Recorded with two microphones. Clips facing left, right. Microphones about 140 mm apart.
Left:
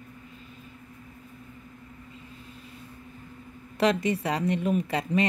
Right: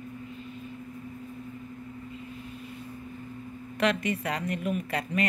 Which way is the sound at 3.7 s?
30° left (ahead or behind).